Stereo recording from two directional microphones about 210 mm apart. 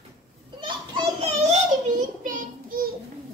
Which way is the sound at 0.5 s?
20° right (ahead or behind).